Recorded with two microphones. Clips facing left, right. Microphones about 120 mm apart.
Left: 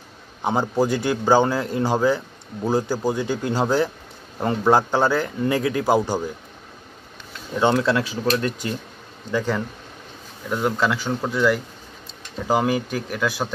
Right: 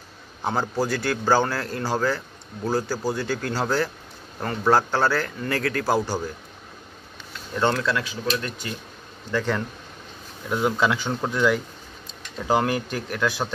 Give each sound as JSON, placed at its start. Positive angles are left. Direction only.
{"t": 0.4, "sound": "a man's voice", "side_deg": 15}
{"t": 7.5, "sound": "a man's voice", "side_deg": 15}
{"t": 7.9, "sound": "speech", "side_deg": 30}
{"t": 9.3, "sound": "a man's voice", "side_deg": 10}